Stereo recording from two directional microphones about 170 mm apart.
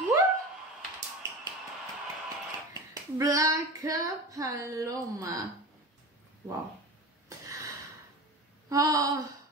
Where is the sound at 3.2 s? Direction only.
20° right (ahead or behind).